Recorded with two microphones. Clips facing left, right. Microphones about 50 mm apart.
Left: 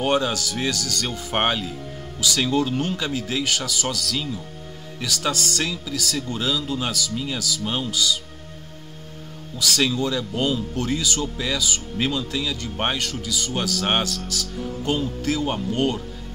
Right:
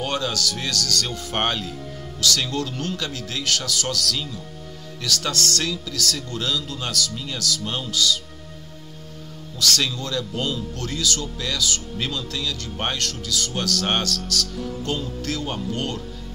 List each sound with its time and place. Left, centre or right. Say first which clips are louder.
0.0 s speech: left 3 dB; centre
9.6 s speech: left 2 dB; centre